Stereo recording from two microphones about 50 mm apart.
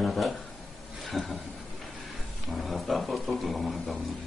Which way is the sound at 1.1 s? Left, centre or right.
Centre.